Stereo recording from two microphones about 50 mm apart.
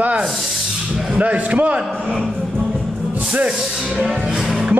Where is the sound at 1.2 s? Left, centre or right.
Right.